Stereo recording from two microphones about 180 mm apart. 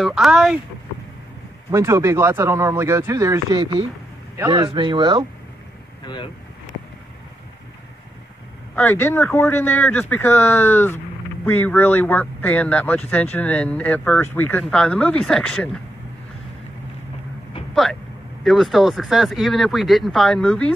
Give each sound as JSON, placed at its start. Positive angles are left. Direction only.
{"t": 0.0, "sound": "speech", "side_deg": 0}
{"t": 1.7, "sound": "speech", "side_deg": -15}
{"t": 6.0, "sound": "speech", "side_deg": 25}
{"t": 8.7, "sound": "speech", "side_deg": 10}
{"t": 18.4, "sound": "speech", "side_deg": 0}